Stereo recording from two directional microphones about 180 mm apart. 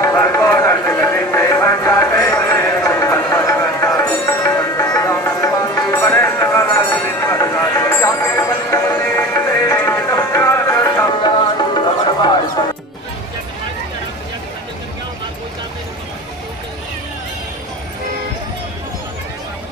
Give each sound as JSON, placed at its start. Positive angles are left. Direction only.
{"t": 0.0, "sound": "music", "side_deg": 15}
{"t": 11.2, "sound": "music", "side_deg": 25}